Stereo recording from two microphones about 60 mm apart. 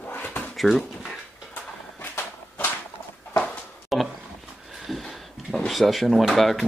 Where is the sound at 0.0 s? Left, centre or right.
Left.